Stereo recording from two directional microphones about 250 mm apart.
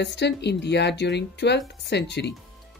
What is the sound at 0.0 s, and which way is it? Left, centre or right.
Speech, left.